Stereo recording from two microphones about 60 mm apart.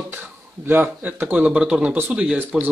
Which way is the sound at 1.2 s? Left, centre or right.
Right.